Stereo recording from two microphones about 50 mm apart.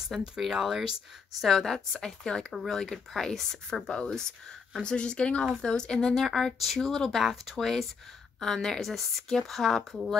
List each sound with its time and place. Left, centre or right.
0.1 s speech: centre
1.4 s speech: centre
6.1 s speech: centre